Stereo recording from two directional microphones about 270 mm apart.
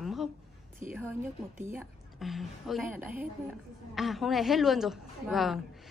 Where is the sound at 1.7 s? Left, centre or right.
Centre.